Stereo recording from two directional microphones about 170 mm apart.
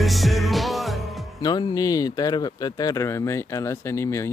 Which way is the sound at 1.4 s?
25° left (ahead or behind).